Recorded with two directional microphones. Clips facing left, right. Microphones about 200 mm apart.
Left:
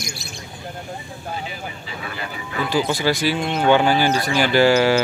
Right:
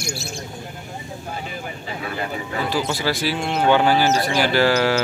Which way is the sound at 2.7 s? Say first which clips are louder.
Left 4 dB; 5° right (ahead or behind).